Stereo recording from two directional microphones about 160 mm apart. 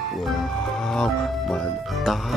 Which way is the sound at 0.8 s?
5° left (ahead or behind).